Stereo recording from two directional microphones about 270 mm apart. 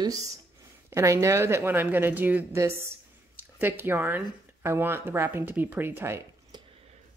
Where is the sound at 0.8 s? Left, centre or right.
Centre.